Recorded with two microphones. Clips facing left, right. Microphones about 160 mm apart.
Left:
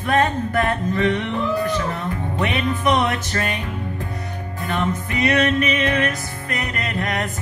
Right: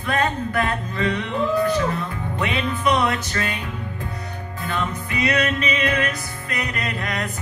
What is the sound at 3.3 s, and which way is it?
Music, 45° left (ahead or behind).